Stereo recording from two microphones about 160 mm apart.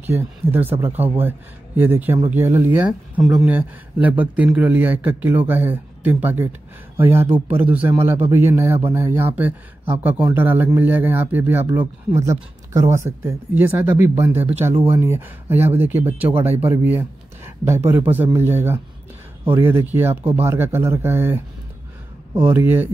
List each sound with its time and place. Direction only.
0.2 s speech: 15° right (ahead or behind)
11.8 s speech: 25° right (ahead or behind)